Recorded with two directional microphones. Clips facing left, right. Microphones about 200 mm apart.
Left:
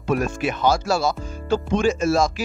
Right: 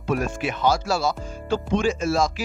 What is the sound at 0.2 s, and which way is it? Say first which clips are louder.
Speech: left 2 dB; 45° left (ahead or behind).